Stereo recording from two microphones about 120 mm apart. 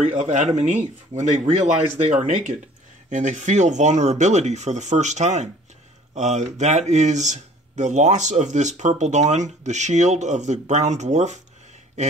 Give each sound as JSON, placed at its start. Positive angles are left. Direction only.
{"t": 0.1, "sound": "speech", "side_deg": -90}